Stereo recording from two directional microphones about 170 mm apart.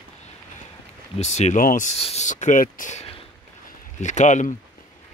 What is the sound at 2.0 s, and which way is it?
Speech, 40° left (ahead or behind).